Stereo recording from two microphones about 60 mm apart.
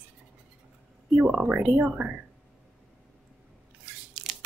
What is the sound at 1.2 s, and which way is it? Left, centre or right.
Speech, centre.